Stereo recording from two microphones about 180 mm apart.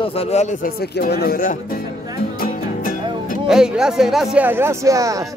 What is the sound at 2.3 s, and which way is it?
Music, 50° left (ahead or behind).